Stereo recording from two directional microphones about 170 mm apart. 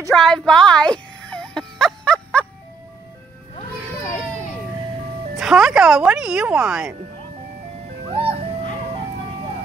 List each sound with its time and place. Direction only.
0.1 s whimper: 5° left (ahead or behind)
5.3 s speech: 5° right (ahead or behind)
8.1 s music: 35° right (ahead or behind)